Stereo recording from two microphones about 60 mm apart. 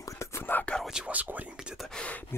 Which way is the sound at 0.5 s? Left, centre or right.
Left.